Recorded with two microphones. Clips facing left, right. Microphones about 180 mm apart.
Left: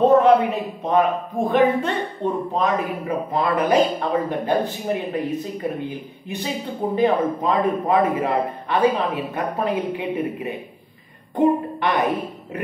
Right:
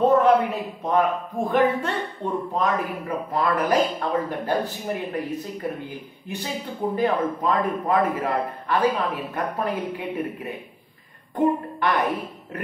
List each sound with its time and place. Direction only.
0.0 s a woman's voice: 20° left (ahead or behind)